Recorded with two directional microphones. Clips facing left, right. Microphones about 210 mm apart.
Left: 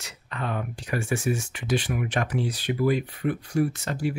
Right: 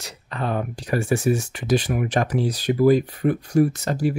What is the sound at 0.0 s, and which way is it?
Speech, 35° right (ahead or behind).